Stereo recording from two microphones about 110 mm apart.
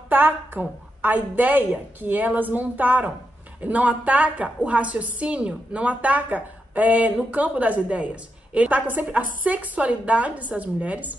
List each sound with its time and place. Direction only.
0.1 s a woman's voice: 15° right (ahead or behind)